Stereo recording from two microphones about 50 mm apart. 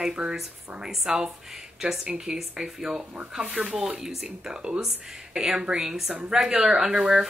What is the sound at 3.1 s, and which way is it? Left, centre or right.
Speech, right.